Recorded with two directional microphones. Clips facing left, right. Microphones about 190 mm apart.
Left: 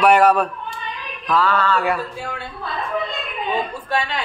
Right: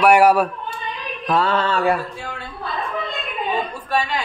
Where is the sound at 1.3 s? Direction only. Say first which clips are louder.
Even; 30° right (ahead or behind).